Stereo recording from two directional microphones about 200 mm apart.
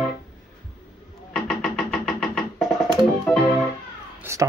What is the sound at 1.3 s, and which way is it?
Music, centre (ahead or behind).